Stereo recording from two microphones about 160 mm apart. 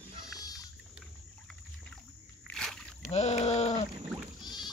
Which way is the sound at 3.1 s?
45° left (ahead or behind).